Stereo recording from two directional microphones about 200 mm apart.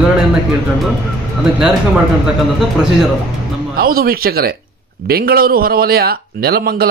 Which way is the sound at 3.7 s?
45° right (ahead or behind).